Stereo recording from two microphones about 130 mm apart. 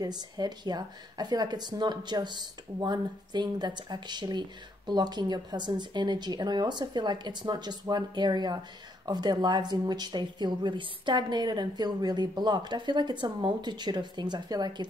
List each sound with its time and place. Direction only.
0.0 s speech: 30° right (ahead or behind)